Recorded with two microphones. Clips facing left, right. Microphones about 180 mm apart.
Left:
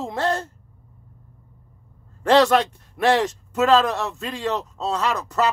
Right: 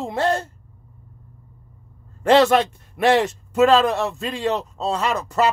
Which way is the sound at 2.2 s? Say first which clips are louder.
Right 1 dB; 20° right (ahead or behind).